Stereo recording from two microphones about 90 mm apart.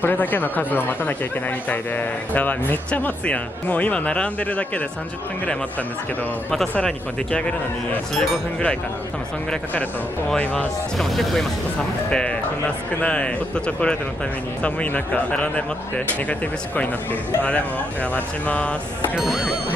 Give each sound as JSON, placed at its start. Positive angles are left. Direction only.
{"t": 0.0, "sound": "speech", "side_deg": 20}
{"t": 6.8, "sound": "speech", "side_deg": 10}
{"t": 10.3, "sound": "speech", "side_deg": 15}
{"t": 11.0, "sound": "speech", "side_deg": 0}
{"t": 19.1, "sound": "speech", "side_deg": -5}